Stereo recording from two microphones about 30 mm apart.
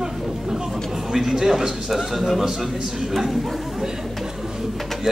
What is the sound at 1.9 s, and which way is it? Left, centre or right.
A man's voice, centre.